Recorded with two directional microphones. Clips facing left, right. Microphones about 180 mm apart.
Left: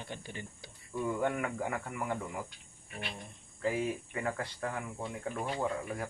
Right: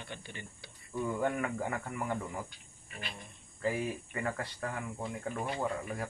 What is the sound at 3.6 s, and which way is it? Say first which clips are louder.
Speech: left 1 dB; 20° left (ahead or behind).